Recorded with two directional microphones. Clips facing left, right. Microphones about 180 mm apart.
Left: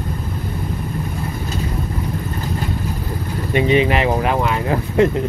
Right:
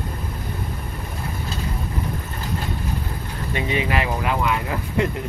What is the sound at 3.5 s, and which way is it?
Speech, 25° left (ahead or behind).